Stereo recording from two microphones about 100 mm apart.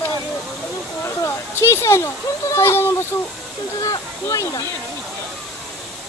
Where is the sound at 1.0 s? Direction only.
25° left (ahead or behind).